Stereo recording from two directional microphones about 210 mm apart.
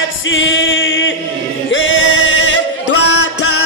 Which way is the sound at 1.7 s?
65° left (ahead or behind).